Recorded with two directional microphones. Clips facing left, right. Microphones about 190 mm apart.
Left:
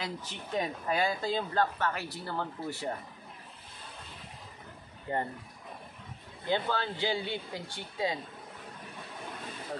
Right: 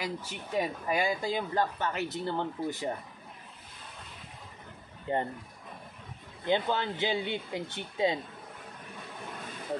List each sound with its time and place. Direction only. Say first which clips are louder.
0.0 s speech: right 2 dB; 10° right (ahead or behind)
5.1 s speech: right 2 dB; 20° right (ahead or behind)
6.4 s speech: right 2 dB; 20° right (ahead or behind)